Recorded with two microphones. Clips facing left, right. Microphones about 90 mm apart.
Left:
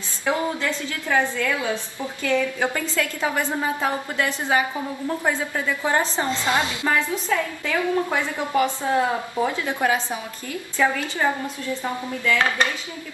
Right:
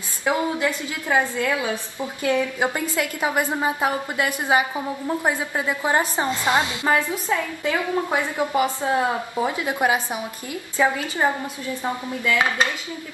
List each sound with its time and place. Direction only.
0.2 s a woman's voice: 15° right (ahead or behind)